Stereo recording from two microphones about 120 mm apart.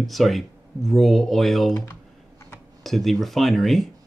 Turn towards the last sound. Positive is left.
turn(degrees=0)  # may be behind; listen again after turning